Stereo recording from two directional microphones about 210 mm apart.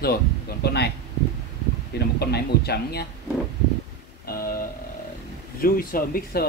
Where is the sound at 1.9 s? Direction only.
50° left (ahead or behind).